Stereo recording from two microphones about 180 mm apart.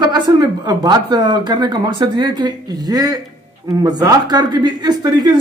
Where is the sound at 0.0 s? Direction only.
20° right (ahead or behind).